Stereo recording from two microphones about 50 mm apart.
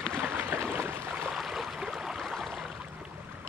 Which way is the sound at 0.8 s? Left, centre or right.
Right.